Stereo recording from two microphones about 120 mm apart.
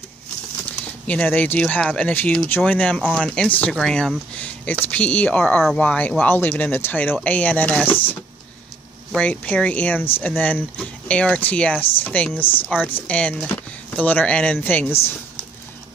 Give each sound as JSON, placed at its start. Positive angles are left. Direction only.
{"t": 1.0, "sound": "speech", "side_deg": 15}